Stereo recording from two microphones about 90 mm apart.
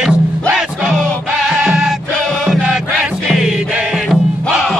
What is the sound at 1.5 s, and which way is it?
Music, 10° right (ahead or behind).